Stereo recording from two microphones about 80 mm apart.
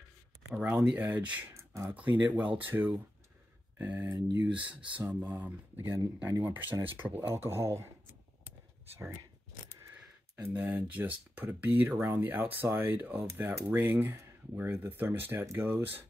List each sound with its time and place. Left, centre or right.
0.5 s speech: centre
1.5 s a sound: right
1.9 s speech: centre
3.7 s speech: right
10.5 s speech: centre